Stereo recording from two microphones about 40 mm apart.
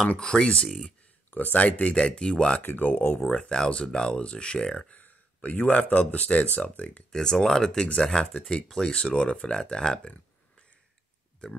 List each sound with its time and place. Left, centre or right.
0.2 s speech: left
1.3 s speech: left
2.0 s speech: left
2.6 s speech: left
3.3 s speech: left
4.9 s speech: left
7.1 s speech: centre
11.4 s speech: left